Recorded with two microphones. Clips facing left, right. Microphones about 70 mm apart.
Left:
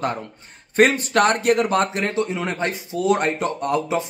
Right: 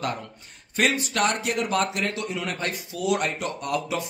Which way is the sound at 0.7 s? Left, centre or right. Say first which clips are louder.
Left 8 dB; left.